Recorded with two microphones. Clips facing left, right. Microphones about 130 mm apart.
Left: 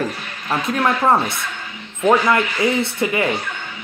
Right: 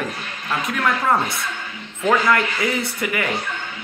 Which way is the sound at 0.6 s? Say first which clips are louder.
Left 4 dB; 30° left (ahead or behind).